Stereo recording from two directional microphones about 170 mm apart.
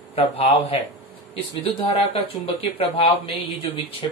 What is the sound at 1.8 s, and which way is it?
A man's voice, 35° left (ahead or behind).